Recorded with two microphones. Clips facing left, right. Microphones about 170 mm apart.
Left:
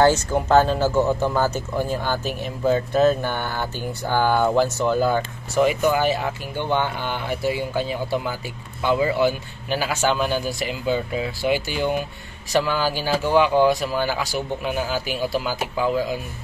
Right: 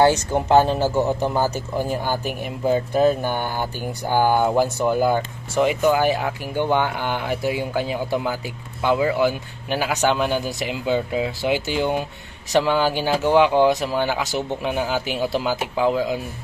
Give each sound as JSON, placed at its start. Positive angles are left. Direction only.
{"t": 0.0, "sound": "speech", "side_deg": -15}